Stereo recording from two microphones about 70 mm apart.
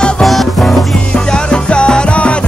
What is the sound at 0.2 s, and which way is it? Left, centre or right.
Music, centre.